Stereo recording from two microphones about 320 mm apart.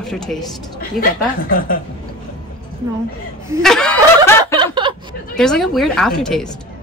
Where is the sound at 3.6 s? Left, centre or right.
Centre.